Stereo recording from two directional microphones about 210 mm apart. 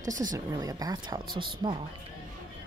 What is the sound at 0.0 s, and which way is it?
Speech, 40° right (ahead or behind).